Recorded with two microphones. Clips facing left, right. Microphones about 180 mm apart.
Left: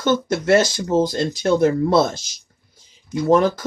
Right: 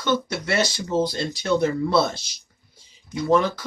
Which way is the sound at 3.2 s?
45° left (ahead or behind).